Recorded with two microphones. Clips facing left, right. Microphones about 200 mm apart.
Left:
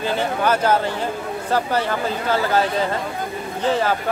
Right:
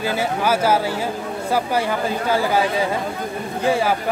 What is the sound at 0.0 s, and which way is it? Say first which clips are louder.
Speech: even; 10° right (ahead or behind).